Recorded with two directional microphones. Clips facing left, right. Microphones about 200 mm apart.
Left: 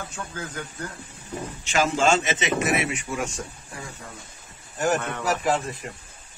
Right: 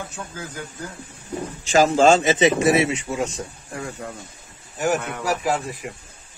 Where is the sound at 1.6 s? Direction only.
35° right (ahead or behind).